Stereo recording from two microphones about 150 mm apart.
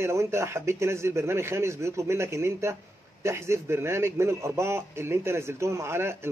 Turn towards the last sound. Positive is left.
turn(degrees=-15)  # may be behind; listen again after turning